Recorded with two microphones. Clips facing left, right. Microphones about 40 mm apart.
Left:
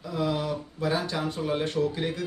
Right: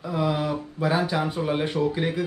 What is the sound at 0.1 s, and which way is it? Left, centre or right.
Speech, centre.